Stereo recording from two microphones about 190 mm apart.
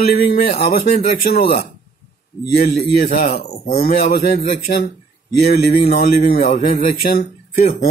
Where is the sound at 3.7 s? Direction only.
55° left (ahead or behind).